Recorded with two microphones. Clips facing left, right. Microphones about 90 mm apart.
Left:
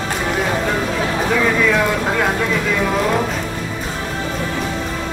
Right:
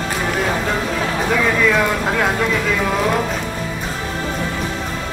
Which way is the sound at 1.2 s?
5° left (ahead or behind).